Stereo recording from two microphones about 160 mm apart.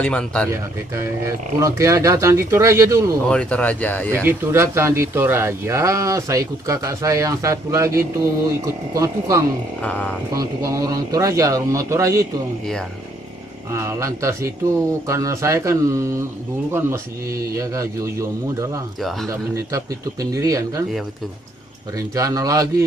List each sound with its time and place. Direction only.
0.0 s speech: 5° left (ahead or behind)
0.5 s speech: 20° right (ahead or behind)
3.3 s speech: 5° left (ahead or behind)
4.1 s speech: 15° right (ahead or behind)
9.8 s speech: 5° left (ahead or behind)
10.3 s speech: 20° right (ahead or behind)
13.7 s speech: 15° right (ahead or behind)
21.9 s speech: 20° right (ahead or behind)